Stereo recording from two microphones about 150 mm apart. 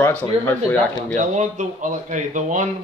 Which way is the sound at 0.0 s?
10° left (ahead or behind).